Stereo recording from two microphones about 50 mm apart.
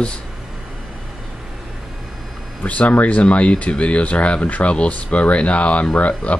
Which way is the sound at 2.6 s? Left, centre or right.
Left.